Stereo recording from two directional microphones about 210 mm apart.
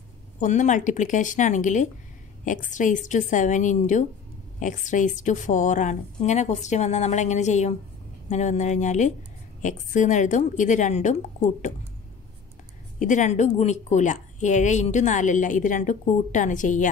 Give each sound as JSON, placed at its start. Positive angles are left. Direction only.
{"t": 0.4, "sound": "a woman's voice", "side_deg": 35}
{"t": 13.0, "sound": "a woman's voice", "side_deg": 35}